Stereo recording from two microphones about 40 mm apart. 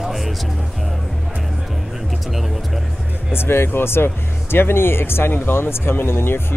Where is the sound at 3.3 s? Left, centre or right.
Left.